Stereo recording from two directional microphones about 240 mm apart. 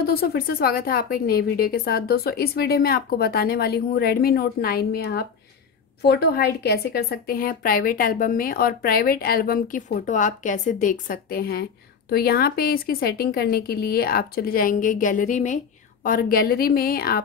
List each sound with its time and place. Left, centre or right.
0.0 s a woman's voice: left